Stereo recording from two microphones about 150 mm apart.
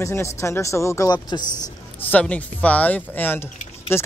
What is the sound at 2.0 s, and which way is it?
Speech, 10° left (ahead or behind).